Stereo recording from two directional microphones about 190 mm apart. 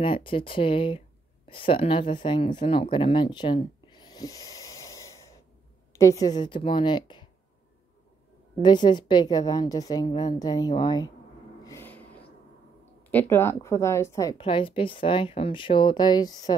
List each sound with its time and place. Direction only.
0.0 s speech: 25° left (ahead or behind)
8.6 s speech: 25° left (ahead or behind)
11.6 s a sound: 10° left (ahead or behind)
13.1 s speech: 10° left (ahead or behind)